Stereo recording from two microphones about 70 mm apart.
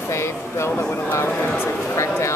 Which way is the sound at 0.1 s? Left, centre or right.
Left.